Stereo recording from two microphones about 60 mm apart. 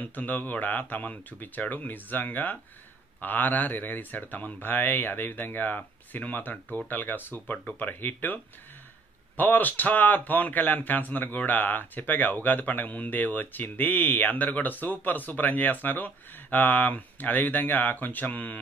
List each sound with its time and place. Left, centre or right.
0.0 s a man's voice: left
9.4 s a man's voice: left